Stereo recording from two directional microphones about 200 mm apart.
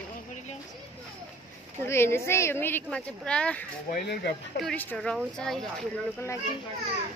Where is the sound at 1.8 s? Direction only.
10° left (ahead or behind).